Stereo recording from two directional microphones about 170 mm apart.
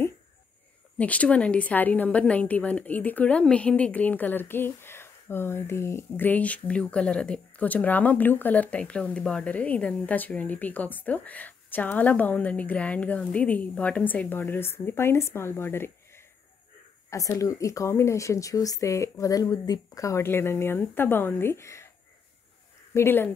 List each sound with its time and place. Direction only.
0.9 s a woman's voice: 10° left (ahead or behind)
22.9 s a woman's voice: 10° left (ahead or behind)